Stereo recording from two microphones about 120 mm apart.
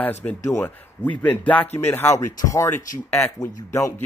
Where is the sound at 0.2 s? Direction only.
10° left (ahead or behind).